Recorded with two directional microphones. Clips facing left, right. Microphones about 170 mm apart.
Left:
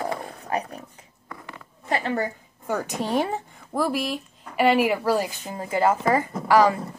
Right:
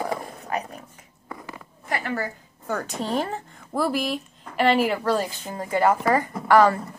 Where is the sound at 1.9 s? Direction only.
25° left (ahead or behind).